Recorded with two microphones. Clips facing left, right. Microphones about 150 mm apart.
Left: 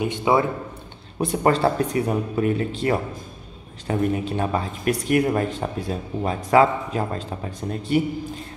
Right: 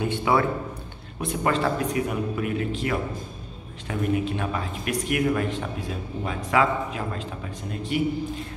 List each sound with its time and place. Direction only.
0.0 s speech: 20° left (ahead or behind)
1.2 s speech: 35° left (ahead or behind)